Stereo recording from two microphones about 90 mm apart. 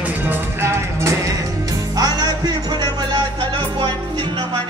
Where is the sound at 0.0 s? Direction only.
20° right (ahead or behind).